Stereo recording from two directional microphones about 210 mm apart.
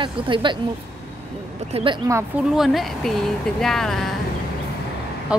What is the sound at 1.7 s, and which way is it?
Speech, 30° right (ahead or behind).